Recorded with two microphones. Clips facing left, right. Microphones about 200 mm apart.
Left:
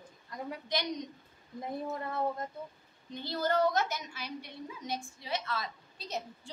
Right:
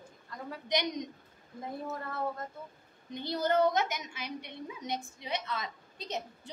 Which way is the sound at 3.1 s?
20° right (ahead or behind).